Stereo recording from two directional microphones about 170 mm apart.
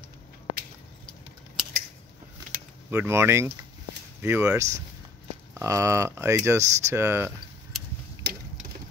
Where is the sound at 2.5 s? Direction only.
60° right (ahead or behind).